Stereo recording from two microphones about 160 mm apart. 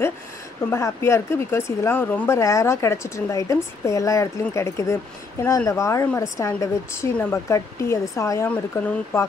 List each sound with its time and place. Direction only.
0.7 s a woman's voice: 15° left (ahead or behind)